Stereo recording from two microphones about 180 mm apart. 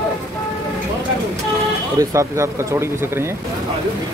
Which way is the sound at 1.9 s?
15° right (ahead or behind).